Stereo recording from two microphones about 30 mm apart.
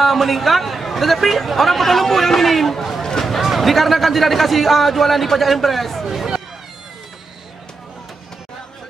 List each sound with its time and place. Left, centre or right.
0.0 s speech: centre
3.0 s a sound: centre
3.4 s speech: centre
6.0 s hubbub: centre